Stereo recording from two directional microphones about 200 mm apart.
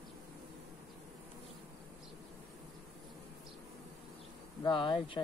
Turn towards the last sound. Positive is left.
turn(degrees=25)  # may be behind; listen again after turning